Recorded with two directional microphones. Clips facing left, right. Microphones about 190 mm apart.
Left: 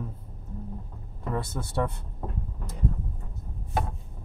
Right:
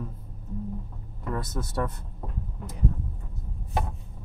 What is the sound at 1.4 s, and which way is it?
Speech, 30° left (ahead or behind).